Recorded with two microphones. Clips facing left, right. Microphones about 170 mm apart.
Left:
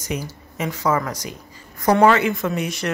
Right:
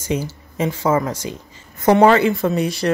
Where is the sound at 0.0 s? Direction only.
30° right (ahead or behind).